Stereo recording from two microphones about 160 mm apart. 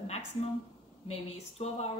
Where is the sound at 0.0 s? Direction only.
40° left (ahead or behind).